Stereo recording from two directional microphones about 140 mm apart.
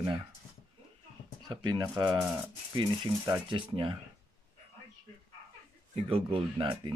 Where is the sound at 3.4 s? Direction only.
35° right (ahead or behind).